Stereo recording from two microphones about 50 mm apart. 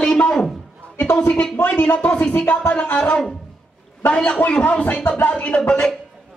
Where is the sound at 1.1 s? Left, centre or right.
Left.